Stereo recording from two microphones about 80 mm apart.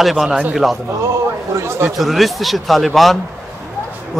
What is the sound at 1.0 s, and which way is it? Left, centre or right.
Speech, right.